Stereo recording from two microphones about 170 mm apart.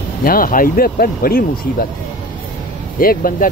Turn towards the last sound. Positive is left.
turn(degrees=55)  # may be behind; listen again after turning